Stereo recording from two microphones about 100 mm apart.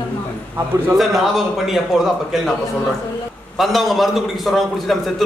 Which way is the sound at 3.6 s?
Centre (ahead or behind).